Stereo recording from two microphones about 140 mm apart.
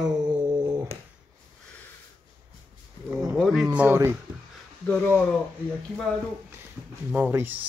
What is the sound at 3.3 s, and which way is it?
Speech, centre (ahead or behind).